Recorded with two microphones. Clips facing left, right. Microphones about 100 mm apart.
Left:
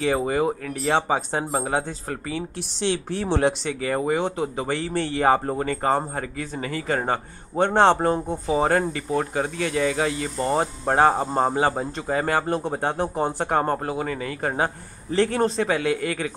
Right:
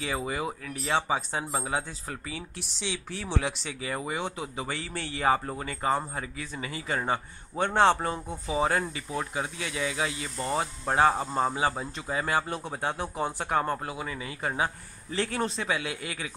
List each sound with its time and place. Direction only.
0.0 s speech: 45° left (ahead or behind)
7.5 s a man's voice: 30° left (ahead or behind)
7.9 s speech: 45° left (ahead or behind)